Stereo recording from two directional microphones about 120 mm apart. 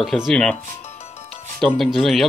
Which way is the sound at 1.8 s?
Centre (ahead or behind).